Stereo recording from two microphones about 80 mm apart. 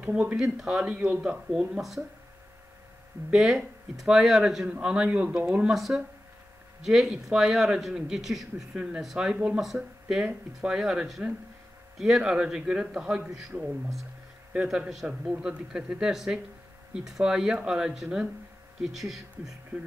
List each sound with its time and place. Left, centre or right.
0.0 s speech: centre
3.3 s speech: centre
14.5 s speech: centre